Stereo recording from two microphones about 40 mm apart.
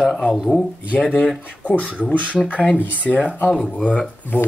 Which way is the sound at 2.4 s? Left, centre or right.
Left.